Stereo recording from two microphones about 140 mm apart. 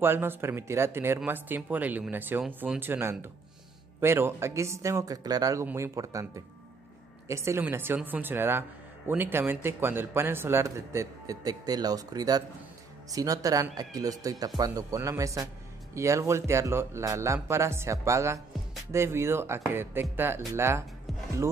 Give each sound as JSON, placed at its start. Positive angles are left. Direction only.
{"t": 0.0, "sound": "a man's voice", "side_deg": -15}